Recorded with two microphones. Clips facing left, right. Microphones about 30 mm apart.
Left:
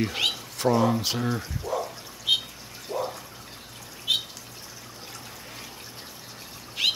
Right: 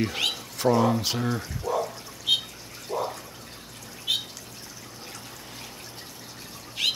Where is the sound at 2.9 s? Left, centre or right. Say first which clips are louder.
Right 1 dB; centre.